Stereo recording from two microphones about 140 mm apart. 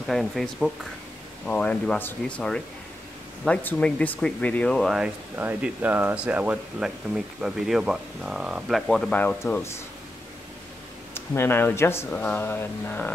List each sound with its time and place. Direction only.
0.0 s speech: centre (ahead or behind)
5.4 s speech: 10° right (ahead or behind); by 9.8 s 20° left (ahead or behind)
11.1 s speech: 15° left (ahead or behind)